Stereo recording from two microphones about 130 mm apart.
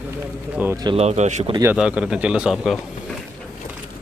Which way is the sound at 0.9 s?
55° right (ahead or behind).